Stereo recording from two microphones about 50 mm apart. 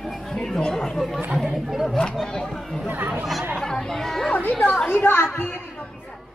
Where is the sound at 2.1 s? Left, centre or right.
Centre.